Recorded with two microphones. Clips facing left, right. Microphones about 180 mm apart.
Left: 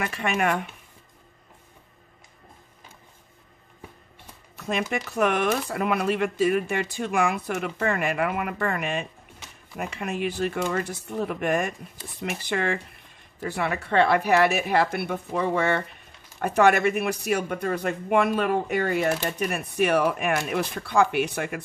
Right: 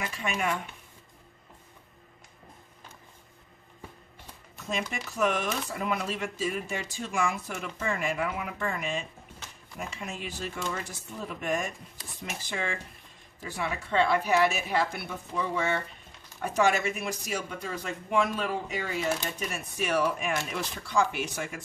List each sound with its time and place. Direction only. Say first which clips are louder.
0.0 s speech: left 6 dB; 65° left (ahead or behind)
4.6 s speech: left 6 dB; 65° left (ahead or behind)